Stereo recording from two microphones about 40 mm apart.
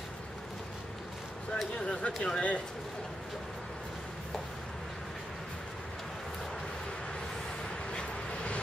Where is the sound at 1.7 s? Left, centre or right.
Left.